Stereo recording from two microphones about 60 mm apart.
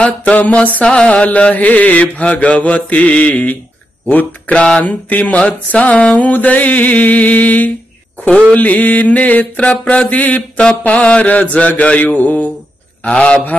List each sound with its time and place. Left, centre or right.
0.0 s mantra: left
4.6 s mantra: centre
13.0 s a man's voice: centre